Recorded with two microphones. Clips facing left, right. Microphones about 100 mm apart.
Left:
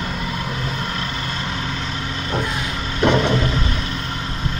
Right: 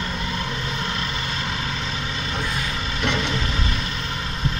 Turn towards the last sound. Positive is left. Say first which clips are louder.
# left 8 dB
turn(degrees=40)  # may be behind; listen again after turning